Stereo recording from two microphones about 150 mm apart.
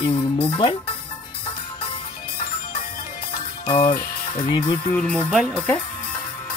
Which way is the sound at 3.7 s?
35° left (ahead or behind).